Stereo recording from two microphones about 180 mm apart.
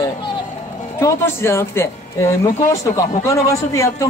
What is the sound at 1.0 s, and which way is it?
A man's voice, 15° left (ahead or behind).